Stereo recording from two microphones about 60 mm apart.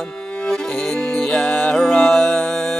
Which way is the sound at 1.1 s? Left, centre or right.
Centre.